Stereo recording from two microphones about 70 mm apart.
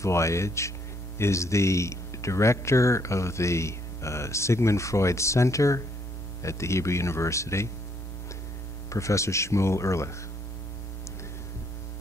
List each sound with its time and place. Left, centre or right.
0.0 s speech: left
8.9 s speech: left